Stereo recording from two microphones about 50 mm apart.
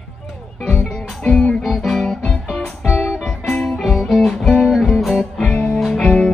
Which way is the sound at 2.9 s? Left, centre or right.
Centre.